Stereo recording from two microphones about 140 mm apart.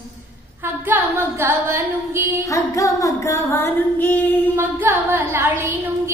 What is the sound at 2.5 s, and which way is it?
Female singing, 25° left (ahead or behind).